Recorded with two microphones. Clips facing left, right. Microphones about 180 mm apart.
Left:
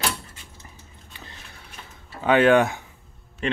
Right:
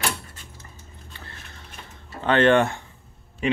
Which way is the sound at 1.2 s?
15° left (ahead or behind).